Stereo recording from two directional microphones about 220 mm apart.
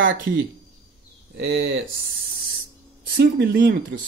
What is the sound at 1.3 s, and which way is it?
Speech, 45° right (ahead or behind).